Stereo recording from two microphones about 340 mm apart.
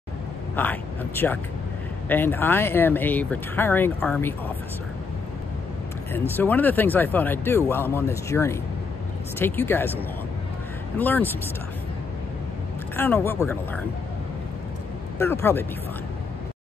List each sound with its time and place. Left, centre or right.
0.6 s speech: centre
6.1 s speech: centre
11.0 s speech: centre
12.9 s speech: centre
15.1 s speech: centre